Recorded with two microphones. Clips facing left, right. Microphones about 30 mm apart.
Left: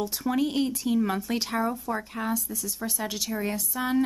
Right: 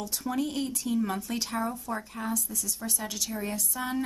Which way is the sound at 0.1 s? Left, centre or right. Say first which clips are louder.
Left 4 dB; centre.